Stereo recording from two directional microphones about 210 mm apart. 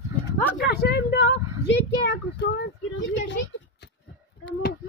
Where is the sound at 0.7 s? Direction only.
50° left (ahead or behind).